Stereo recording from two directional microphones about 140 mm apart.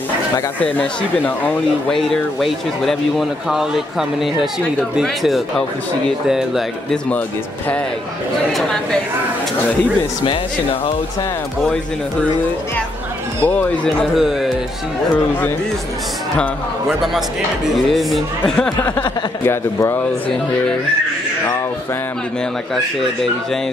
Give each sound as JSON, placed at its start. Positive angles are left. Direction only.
{"t": 0.7, "sound": "speech", "side_deg": 15}
{"t": 2.0, "sound": "a man's voice", "side_deg": 0}
{"t": 10.2, "sound": "speech", "side_deg": 40}
{"t": 11.6, "sound": "a man's voice", "side_deg": 5}
{"t": 13.4, "sound": "speech", "side_deg": 10}
{"t": 14.1, "sound": "a man's voice", "side_deg": 0}
{"t": 17.8, "sound": "a man's voice", "side_deg": 0}